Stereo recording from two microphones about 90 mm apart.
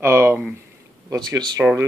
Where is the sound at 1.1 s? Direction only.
45° right (ahead or behind).